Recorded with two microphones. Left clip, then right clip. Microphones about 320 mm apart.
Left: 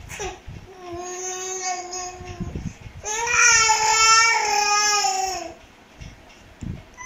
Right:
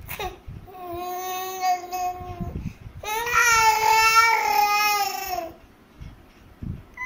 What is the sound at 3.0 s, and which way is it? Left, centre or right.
Baby cry, right.